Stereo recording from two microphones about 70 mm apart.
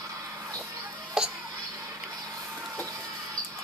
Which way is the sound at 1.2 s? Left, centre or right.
Centre.